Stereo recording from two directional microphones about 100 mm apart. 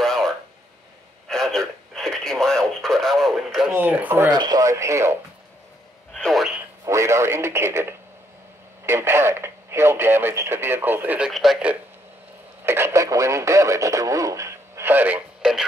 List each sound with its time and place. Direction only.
0.0 s a sound: centre (ahead or behind)
1.3 s radio: 5° left (ahead or behind)
3.7 s speech: 15° right (ahead or behind)
4.3 s speech: 40° right (ahead or behind)
6.1 s a sound: 5° left (ahead or behind)
6.8 s speech: 30° right (ahead or behind)
11.2 s speech: centre (ahead or behind)
12.6 s speech: 25° right (ahead or behind)
14.9 s speech: 20° right (ahead or behind)